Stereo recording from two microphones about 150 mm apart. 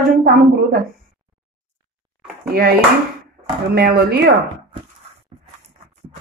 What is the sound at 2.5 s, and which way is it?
Speech, 85° right.